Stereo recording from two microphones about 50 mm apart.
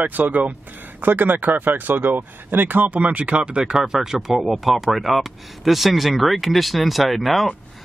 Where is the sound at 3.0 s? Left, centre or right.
Right.